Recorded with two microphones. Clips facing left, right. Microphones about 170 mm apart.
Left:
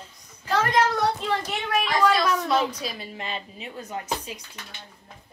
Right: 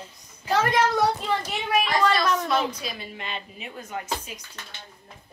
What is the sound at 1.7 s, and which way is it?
A child's voice, 5° right (ahead or behind).